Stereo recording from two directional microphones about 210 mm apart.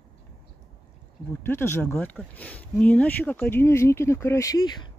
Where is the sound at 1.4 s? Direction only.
10° left (ahead or behind).